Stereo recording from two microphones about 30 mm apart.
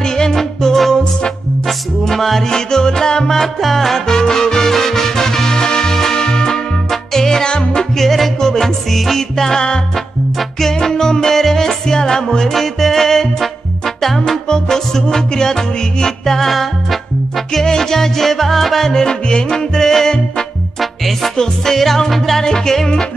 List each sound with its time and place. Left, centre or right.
0.0 s music: left
2.5 s music: left
4.1 s music: left
6.9 s music: centre
7.2 s music: left
8.0 s music: centre
10.6 s music: centre
17.6 s music: centre
20.8 s music: centre
21.4 s music: centre
22.4 s music: centre